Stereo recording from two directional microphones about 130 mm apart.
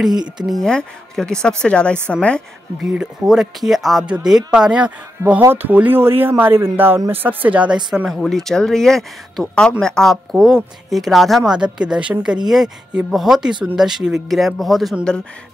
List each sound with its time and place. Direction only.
0.5 s a woman's voice: 5° left (ahead or behind)
2.9 s speech: 5° right (ahead or behind)
5.2 s speech: 20° right (ahead or behind); by 15.2 s 5° left (ahead or behind)